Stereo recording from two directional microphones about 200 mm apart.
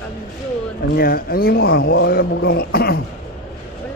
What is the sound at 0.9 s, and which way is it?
Speech, 50° left (ahead or behind).